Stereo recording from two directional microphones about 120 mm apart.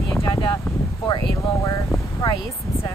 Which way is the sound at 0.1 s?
25° left (ahead or behind).